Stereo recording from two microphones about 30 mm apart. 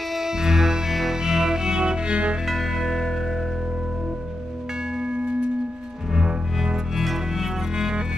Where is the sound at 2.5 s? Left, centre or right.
Centre.